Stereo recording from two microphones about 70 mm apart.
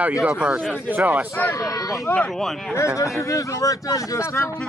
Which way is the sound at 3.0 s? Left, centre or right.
Left.